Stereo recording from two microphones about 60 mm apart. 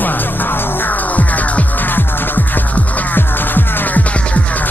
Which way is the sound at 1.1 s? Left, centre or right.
Left.